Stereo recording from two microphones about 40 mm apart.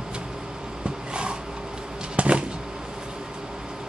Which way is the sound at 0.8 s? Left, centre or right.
Right.